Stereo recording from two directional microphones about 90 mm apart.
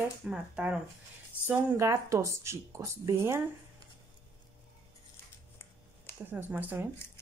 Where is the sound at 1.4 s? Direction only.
25° right (ahead or behind).